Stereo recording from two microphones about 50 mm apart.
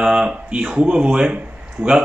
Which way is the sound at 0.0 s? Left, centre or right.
Right.